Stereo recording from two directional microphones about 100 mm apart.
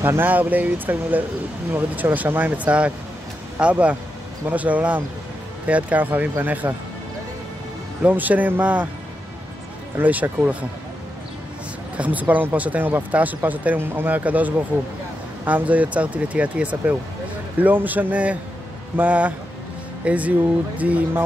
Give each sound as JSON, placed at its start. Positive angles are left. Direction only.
{"t": 0.0, "sound": "speech", "side_deg": -20}
{"t": 8.0, "sound": "speech", "side_deg": -15}
{"t": 9.9, "sound": "speech", "side_deg": -15}
{"t": 12.0, "sound": "speech", "side_deg": -15}